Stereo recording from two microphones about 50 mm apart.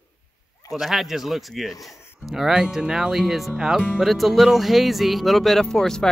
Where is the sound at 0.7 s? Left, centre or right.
Centre.